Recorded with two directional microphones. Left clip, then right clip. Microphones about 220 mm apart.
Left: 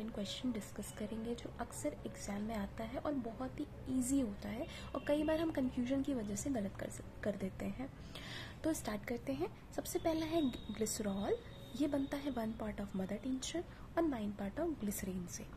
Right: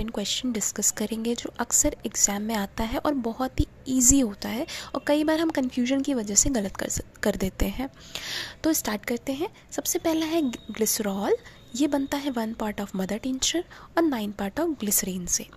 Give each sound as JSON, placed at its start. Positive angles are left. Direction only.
{"t": 0.0, "sound": "a woman's voice", "side_deg": -30}